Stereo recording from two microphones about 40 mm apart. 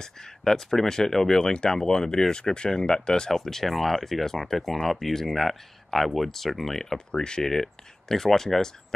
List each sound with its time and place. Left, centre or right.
0.0 s speech: centre
3.3 s speech: centre
7.1 s speech: left
7.4 s speech: centre